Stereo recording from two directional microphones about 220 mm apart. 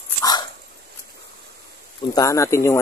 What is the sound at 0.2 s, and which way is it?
Dog, 20° left (ahead or behind).